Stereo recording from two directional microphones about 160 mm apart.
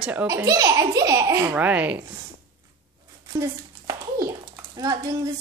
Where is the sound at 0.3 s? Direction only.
20° right (ahead or behind).